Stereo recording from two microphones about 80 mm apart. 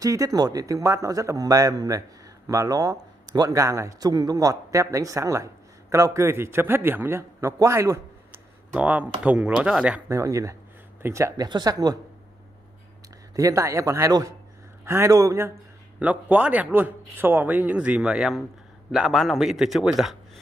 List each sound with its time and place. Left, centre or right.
0.0 s a man's voice: right
3.5 s a man's voice: right
8.7 s speech: centre
10.0 s speech: right
11.3 s a man's voice: right
13.4 s speech: right
16.0 s a man's voice: centre